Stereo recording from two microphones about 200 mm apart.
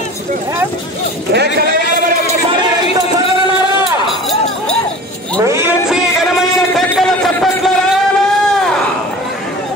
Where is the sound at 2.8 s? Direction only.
30° left (ahead or behind).